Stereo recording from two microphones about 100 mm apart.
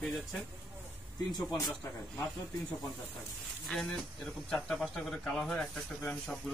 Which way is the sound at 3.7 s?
15° left (ahead or behind).